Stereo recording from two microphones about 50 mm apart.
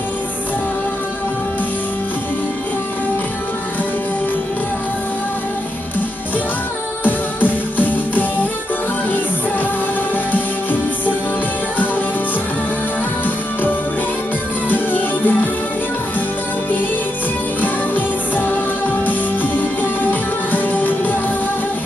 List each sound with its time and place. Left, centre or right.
7.1 s music: left
10.3 s music: left
14.7 s music: left
17.6 s music: left